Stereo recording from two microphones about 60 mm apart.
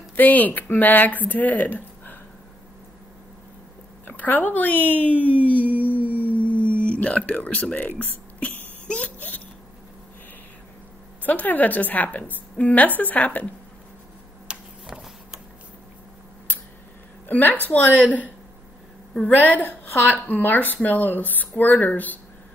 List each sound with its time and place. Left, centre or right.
0.1 s speech: left
4.0 s a woman's voice: left
5.7 s music: right
6.3 s a sound: left
11.2 s a woman's voice: left
14.5 s a sound: centre
17.3 s a woman's voice: left
19.2 s a woman's voice: left